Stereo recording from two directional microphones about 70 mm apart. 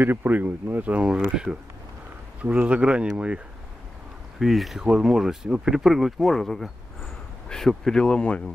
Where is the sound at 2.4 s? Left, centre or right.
Centre.